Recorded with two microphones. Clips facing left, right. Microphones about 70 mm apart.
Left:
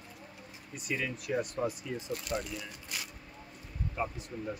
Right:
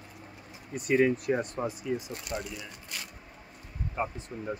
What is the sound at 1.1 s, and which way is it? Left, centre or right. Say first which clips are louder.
Speech: right 6 dB; right.